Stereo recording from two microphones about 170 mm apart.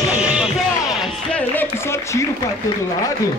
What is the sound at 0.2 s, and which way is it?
Music, 5° right (ahead or behind).